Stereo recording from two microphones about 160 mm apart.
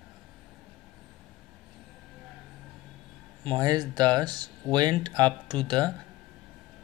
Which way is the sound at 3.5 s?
25° right (ahead or behind).